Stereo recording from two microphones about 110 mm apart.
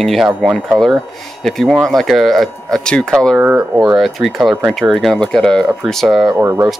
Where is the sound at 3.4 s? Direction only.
15° right (ahead or behind).